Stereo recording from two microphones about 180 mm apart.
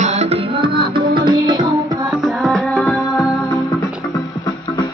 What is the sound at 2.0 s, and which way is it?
Music, centre (ahead or behind).